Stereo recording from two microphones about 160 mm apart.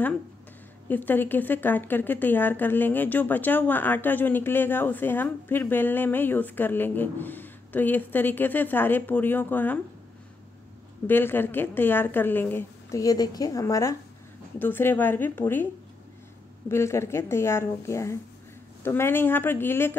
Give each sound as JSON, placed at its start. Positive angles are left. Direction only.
{"t": 0.8, "sound": "a woman's voice", "side_deg": 10}
{"t": 11.1, "sound": "a woman's voice", "side_deg": 15}